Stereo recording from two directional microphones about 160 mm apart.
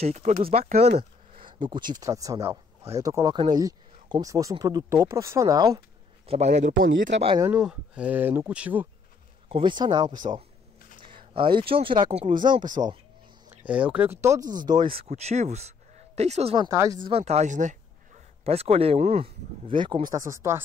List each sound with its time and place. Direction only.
0.0 s speech: 45° right (ahead or behind); by 5.8 s 20° right (ahead or behind)
6.2 s speech: 40° right (ahead or behind)
7.5 s speech: 5° right (ahead or behind)
9.5 s speech: 30° right (ahead or behind)
11.3 s speech: 30° right (ahead or behind)
13.7 s speech: 10° right (ahead or behind); by 15.0 s 30° right (ahead or behind)
15.0 s speech: 45° right (ahead or behind)
16.5 s speech: 20° right (ahead or behind)
17.0 s speech: 40° right (ahead or behind)
18.4 s speech: 40° right (ahead or behind)
20.1 s speech: 20° right (ahead or behind)